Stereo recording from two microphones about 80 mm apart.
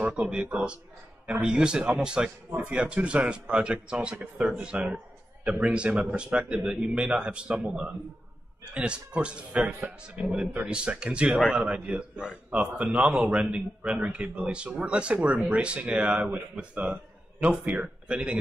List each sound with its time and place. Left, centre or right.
0.0 s a man's voice: centre